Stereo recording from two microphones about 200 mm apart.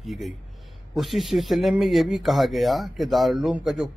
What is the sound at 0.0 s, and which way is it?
Speech, centre (ahead or behind).